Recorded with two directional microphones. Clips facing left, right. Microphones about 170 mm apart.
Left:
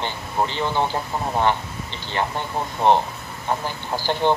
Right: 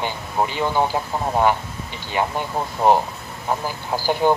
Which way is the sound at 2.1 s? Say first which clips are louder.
Right 2 dB; 10° right (ahead or behind).